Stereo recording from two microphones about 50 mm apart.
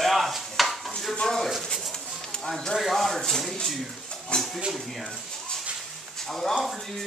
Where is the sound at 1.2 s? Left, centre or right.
Centre.